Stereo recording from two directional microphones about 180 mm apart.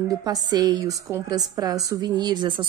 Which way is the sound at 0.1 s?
20° right (ahead or behind).